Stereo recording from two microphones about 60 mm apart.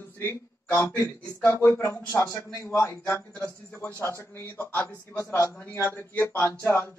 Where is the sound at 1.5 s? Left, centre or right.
Left.